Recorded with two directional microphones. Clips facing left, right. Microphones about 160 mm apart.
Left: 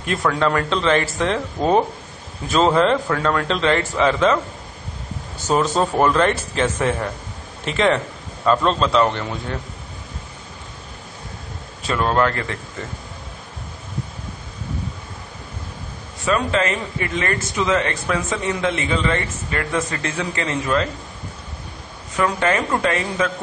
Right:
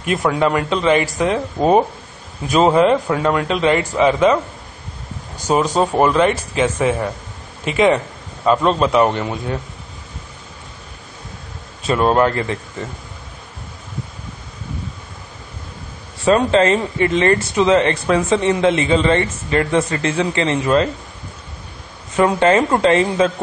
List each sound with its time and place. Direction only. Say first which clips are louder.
0.0 s a man's voice: right 3 dB; 15° right (ahead or behind)
5.5 s a man's voice: right 2 dB; 10° right (ahead or behind)
11.9 s speech: right 4 dB; 25° right (ahead or behind)
16.3 s speech: right 7 dB; 30° right (ahead or behind)
22.1 s speech: right 6 dB; 25° right (ahead or behind)